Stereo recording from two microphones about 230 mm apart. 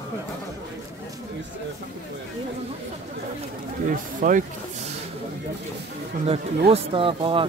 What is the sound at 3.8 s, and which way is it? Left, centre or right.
Speech, right.